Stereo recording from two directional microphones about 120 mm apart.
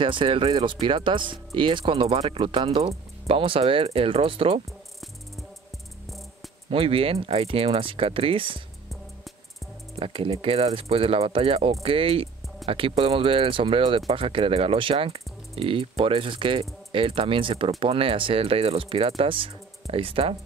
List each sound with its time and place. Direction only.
0.0 s speech: 45° right (ahead or behind)
2.8 s speech: 55° right (ahead or behind)
6.7 s speech: 50° right (ahead or behind)
9.9 s speech: 50° right (ahead or behind)